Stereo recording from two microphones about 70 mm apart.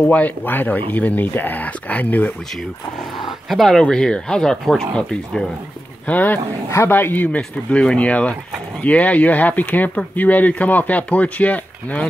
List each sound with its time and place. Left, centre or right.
0.0 s speech: centre
3.4 s speech: centre
6.0 s speech: left